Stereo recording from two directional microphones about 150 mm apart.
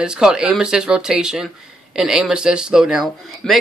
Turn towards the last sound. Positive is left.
turn(degrees=0)  # may be behind; listen again after turning